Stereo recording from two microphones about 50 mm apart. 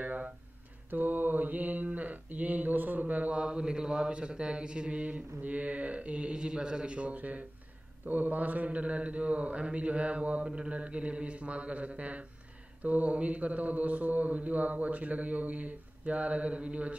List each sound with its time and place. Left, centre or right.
0.0 s a sound: right
0.8 s mantra: right
3.3 s speech: centre